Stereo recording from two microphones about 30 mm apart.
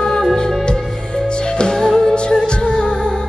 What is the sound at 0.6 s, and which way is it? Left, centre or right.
Music, left.